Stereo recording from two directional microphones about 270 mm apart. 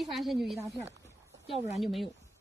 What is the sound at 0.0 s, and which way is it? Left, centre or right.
A woman's voice, centre.